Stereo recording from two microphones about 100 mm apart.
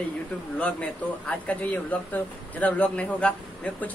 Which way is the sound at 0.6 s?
15° left (ahead or behind).